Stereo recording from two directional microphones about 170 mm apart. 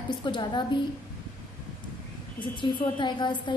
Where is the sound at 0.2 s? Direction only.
25° left (ahead or behind).